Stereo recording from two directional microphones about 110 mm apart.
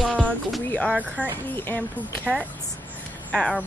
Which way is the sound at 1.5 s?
20° left (ahead or behind).